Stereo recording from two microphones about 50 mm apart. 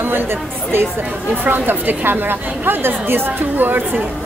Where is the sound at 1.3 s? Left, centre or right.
Right.